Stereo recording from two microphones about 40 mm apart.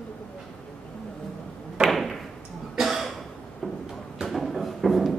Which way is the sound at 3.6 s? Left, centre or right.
Left.